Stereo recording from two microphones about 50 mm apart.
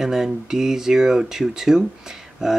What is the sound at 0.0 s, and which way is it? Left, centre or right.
Speech, centre.